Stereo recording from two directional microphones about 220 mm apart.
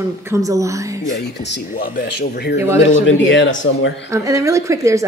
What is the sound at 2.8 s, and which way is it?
Speech, 55° left (ahead or behind).